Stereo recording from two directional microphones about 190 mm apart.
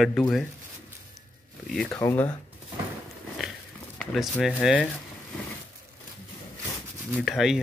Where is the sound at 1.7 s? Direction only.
5° left (ahead or behind).